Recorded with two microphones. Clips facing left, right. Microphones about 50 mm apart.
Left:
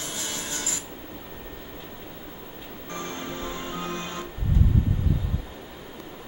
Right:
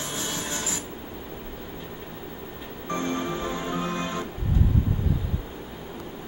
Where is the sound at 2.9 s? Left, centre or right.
Right.